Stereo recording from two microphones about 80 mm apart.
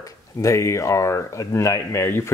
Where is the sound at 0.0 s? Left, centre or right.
Left.